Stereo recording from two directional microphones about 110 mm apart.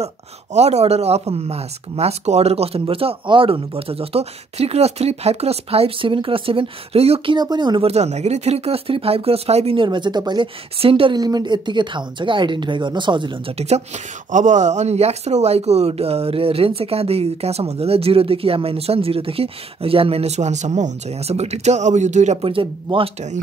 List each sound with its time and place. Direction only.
0.0 s speech: 80° right; by 7.3 s 65° right (ahead or behind)
7.3 s speech: 40° right (ahead or behind)
7.8 s speech: 80° right
9.8 s a woman's voice: 45° right (ahead or behind)
10.8 s speech: 55° right (ahead or behind)
11.1 s a woman's voice: 40° right (ahead or behind)
13.6 s speech: 85° right
22.5 s a woman's voice: 55° right (ahead or behind)